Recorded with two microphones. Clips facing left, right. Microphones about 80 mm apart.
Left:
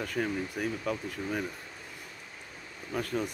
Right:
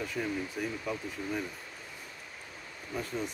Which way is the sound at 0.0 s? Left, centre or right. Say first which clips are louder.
Left 2 dB; left.